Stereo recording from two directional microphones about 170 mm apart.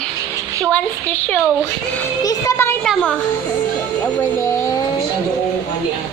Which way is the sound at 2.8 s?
5° left (ahead or behind).